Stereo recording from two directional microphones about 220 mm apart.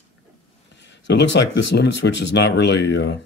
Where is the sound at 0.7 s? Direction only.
55° left (ahead or behind).